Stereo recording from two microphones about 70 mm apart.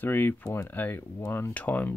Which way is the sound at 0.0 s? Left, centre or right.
Left.